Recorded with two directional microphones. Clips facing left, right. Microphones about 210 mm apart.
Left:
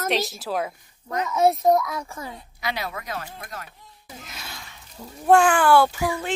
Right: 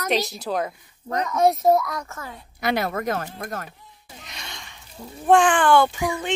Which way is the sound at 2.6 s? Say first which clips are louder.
Right 7 dB; 50° right (ahead or behind).